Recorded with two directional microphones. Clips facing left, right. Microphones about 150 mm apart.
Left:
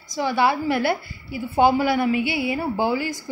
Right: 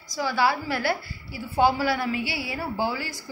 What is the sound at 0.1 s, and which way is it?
A woman's voice, 20° left (ahead or behind).